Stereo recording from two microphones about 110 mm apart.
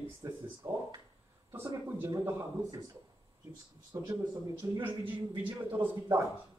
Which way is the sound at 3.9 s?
25° right (ahead or behind).